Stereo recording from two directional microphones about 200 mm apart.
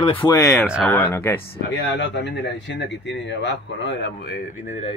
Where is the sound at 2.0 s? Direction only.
60° left (ahead or behind); by 4.8 s 40° left (ahead or behind).